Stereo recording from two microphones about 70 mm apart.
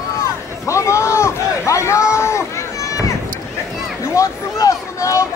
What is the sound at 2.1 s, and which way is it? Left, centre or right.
Run, left.